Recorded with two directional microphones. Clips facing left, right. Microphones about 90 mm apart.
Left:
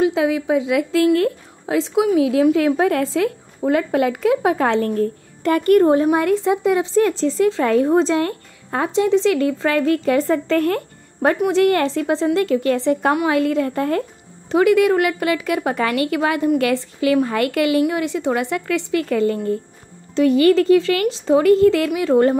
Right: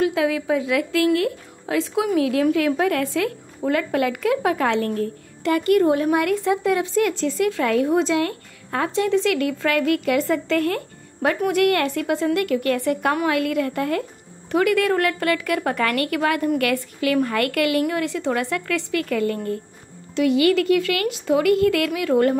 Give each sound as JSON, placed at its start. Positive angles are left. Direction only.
{"t": 0.0, "sound": "a woman's voice", "side_deg": 25}
{"t": 5.4, "sound": "a woman's voice", "side_deg": 45}
{"t": 6.1, "sound": "speech", "side_deg": 25}
{"t": 11.4, "sound": "speech", "side_deg": 25}
{"t": 14.5, "sound": "speech", "side_deg": 20}
{"t": 20.2, "sound": "speech", "side_deg": 40}